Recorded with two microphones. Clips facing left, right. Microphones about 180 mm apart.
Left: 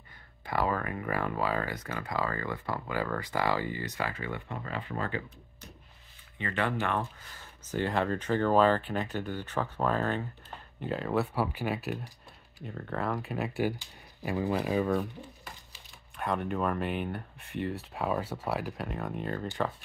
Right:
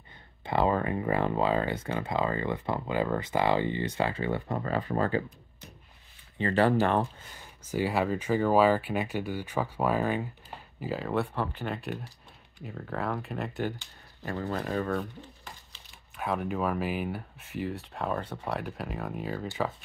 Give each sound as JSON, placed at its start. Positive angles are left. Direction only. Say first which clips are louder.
{"t": 0.5, "sound": "speech", "louder": "right 4 dB", "side_deg": -25}
{"t": 6.3, "sound": "speech", "louder": "right 7 dB", "side_deg": -35}
{"t": 7.3, "sound": "speech", "louder": "right 2 dB", "side_deg": -10}
{"t": 16.2, "sound": "speech", "louder": "right 1 dB", "side_deg": -5}